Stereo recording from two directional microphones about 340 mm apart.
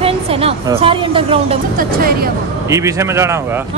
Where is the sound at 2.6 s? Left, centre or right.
Centre.